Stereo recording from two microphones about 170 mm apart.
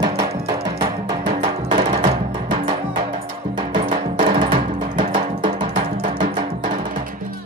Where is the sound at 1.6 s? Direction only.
30° right (ahead or behind).